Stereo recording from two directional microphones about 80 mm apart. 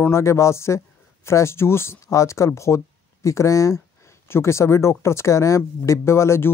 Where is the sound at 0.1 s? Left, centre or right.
Left.